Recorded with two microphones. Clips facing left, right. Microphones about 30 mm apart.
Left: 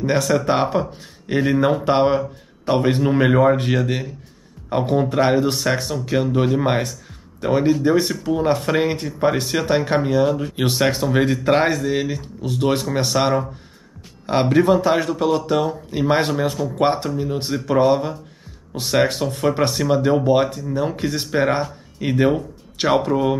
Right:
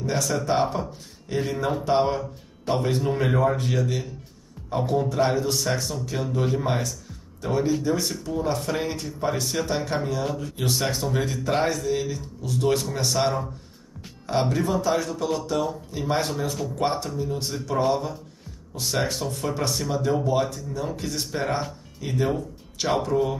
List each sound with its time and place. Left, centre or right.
0.0 s speech: left
18.8 s speech: left